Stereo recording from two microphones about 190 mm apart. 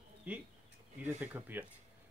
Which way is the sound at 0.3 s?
5° right (ahead or behind).